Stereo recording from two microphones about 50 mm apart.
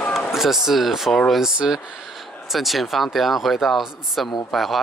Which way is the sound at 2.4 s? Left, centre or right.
Centre.